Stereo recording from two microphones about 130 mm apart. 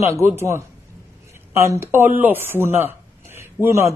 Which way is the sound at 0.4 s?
20° right (ahead or behind).